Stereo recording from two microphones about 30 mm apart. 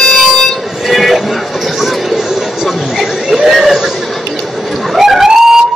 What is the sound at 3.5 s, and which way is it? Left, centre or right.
Speech, centre.